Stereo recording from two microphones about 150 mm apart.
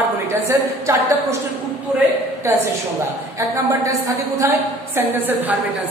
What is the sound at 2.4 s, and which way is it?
Speech, 15° right (ahead or behind).